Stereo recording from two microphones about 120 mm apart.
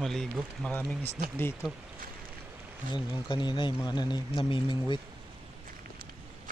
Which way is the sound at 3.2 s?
40° left (ahead or behind).